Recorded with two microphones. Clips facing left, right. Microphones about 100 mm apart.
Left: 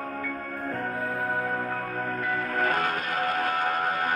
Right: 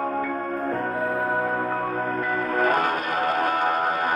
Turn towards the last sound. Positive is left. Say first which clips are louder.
# right 4 dB
turn(degrees=-20)  # may be behind; listen again after turning